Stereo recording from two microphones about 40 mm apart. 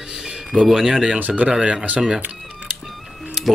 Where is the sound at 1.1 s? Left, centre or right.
Right.